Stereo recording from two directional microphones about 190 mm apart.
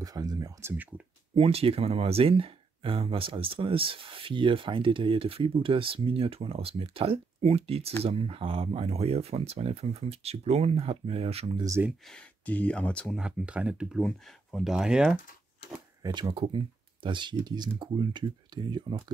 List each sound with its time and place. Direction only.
0.0 s speech: 20° right (ahead or behind)
1.3 s speech: 30° right (ahead or behind)
12.1 s speech: 5° left (ahead or behind)
16.0 s speech: 25° right (ahead or behind)